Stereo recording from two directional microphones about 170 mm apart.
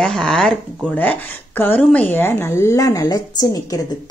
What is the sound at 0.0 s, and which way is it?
Speech, 5° left (ahead or behind).